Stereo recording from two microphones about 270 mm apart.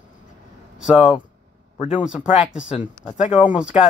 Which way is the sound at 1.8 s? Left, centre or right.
Left.